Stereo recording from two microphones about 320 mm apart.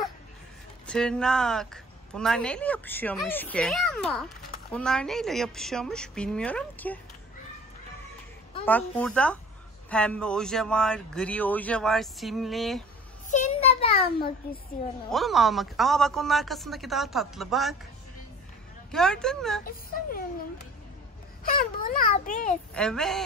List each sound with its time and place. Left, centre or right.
0.8 s a woman's voice: centre
8.6 s a woman's voice: centre
13.3 s a sound: centre
15.0 s a woman's voice: centre
18.9 s a woman's voice: centre
19.6 s speech: left
22.8 s a woman's voice: centre